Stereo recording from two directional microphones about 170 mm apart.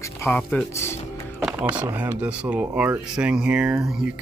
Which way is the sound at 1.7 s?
10° right (ahead or behind).